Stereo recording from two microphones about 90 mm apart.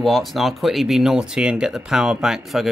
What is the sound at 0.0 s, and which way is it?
Speech, centre (ahead or behind).